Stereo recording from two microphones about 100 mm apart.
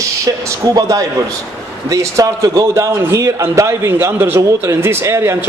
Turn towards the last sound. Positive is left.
turn(degrees=-25)  # may be behind; listen again after turning